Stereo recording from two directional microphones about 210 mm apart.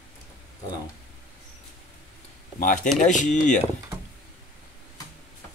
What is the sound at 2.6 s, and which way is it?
Speech, 40° left (ahead or behind).